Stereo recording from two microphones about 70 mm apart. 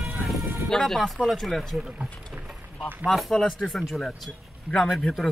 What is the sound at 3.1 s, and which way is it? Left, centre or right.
Speech, centre.